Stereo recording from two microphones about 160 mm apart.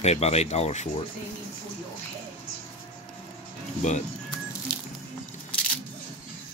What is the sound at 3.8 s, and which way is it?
Speech, 50° left (ahead or behind).